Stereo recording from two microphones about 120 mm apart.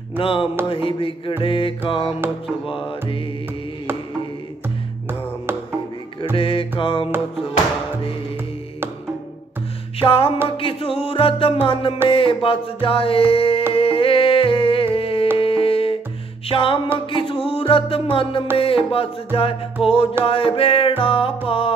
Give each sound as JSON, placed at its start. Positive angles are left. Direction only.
{"t": 0.2, "sound": "music", "side_deg": 45}
{"t": 6.3, "sound": "music", "side_deg": 50}
{"t": 9.9, "sound": "music", "side_deg": 50}
{"t": 15.3, "sound": "humming", "side_deg": 50}
{"t": 16.4, "sound": "music", "side_deg": 45}